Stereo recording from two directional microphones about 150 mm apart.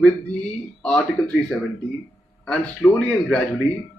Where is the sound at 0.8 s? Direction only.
5° left (ahead or behind).